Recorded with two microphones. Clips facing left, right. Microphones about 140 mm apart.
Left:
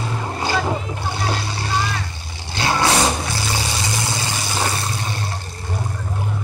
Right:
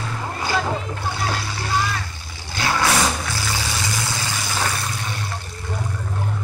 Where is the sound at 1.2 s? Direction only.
25° left (ahead or behind).